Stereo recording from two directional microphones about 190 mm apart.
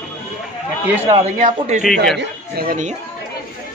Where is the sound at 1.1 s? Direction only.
35° right (ahead or behind).